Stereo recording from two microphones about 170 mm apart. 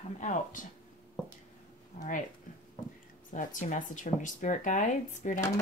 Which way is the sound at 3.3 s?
50° left (ahead or behind).